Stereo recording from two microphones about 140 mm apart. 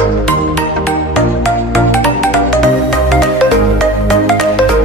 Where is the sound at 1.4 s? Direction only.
Centre (ahead or behind).